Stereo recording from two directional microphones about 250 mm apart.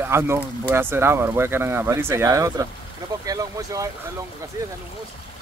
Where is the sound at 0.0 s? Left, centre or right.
Centre.